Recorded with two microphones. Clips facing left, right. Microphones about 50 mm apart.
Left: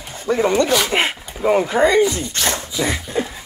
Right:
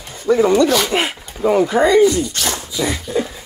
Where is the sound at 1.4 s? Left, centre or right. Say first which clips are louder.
Right 1 dB; left.